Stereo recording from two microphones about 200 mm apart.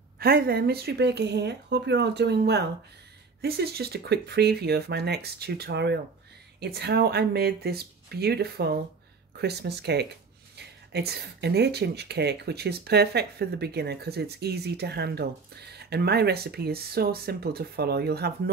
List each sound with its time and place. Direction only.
0.2 s speech: 50° right (ahead or behind)